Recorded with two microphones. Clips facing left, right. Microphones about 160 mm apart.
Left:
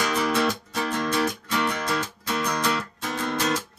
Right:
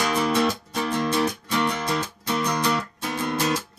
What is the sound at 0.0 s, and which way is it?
Music, 15° right (ahead or behind).